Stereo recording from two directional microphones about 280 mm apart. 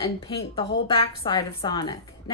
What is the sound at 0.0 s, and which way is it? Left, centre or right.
A woman's voice, centre.